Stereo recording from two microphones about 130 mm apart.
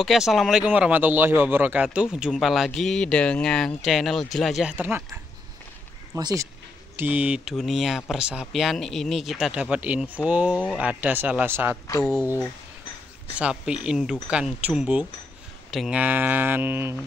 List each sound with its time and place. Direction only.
0.0 s speech: centre (ahead or behind)
4.7 s mantra: 15° right (ahead or behind)
6.1 s speech: 25° right (ahead or behind)
7.0 s speech: 10° right (ahead or behind)
10.8 s mantra: 10° right (ahead or behind)
12.0 s speech: 5° left (ahead or behind)
13.4 s mantra: 5° right (ahead or behind)
15.7 s speech: centre (ahead or behind)
16.0 s mantra: 15° right (ahead or behind)